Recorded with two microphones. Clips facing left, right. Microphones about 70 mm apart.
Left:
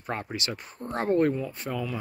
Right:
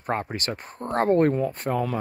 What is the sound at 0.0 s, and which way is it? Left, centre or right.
Speech, right.